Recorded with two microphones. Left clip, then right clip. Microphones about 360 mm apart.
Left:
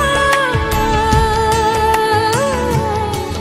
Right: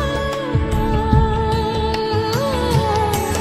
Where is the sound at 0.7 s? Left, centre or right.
Left.